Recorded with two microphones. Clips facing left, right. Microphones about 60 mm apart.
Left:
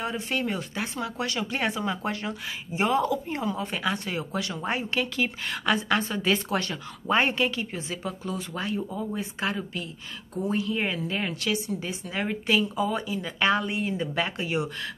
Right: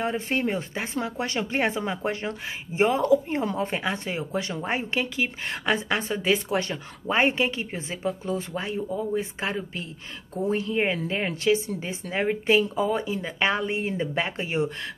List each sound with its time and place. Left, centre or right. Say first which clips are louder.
0.0 s speech: right 3 dB; right